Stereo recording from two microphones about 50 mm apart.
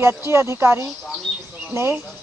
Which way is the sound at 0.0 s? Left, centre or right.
Right.